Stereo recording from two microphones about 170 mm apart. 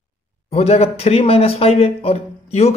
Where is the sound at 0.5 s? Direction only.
40° left (ahead or behind).